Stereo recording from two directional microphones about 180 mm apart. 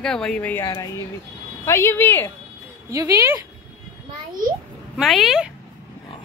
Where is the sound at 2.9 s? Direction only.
20° right (ahead or behind).